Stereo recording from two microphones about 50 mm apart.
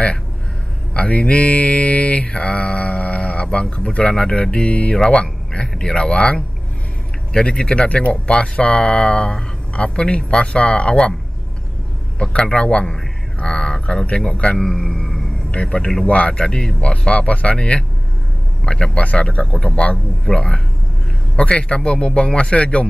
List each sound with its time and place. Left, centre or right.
0.9 s mantra: left
12.2 s mantra: left
13.4 s speech: centre
14.0 s mantra: left
14.6 s speech: centre
16.1 s mantra: left